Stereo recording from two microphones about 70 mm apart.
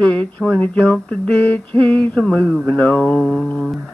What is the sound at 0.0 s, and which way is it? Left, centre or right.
Speech, centre.